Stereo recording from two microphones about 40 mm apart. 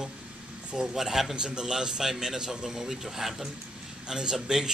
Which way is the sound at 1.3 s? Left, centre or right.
Centre.